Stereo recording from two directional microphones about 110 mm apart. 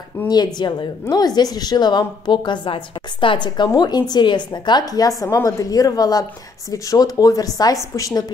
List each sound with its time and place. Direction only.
0.2 s a woman's voice: 15° left (ahead or behind)
0.6 s a woman's voice: 40° left (ahead or behind)